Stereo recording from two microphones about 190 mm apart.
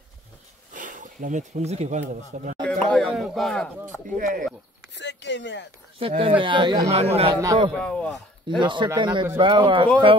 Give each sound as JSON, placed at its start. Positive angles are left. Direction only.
{"t": 0.7, "sound": "speech", "side_deg": -45}
{"t": 2.6, "sound": "speech", "side_deg": 5}
{"t": 4.2, "sound": "speech", "side_deg": -45}
{"t": 4.9, "sound": "speech", "side_deg": 70}
{"t": 5.9, "sound": "speech", "side_deg": -30}
{"t": 7.7, "sound": "speech", "side_deg": 5}
{"t": 8.5, "sound": "speech", "side_deg": -25}